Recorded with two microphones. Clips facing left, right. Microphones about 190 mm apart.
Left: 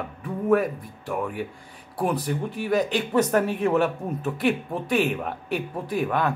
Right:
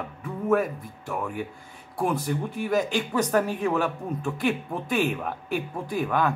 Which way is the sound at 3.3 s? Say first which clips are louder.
Left 2 dB; 20° left (ahead or behind).